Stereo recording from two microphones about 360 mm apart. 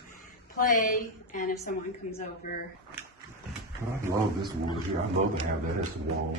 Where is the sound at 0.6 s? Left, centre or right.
Left.